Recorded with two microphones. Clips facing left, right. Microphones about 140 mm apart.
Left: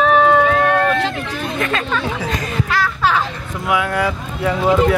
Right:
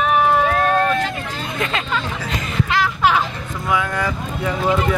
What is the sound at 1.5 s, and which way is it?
Chatter, 20° right (ahead or behind).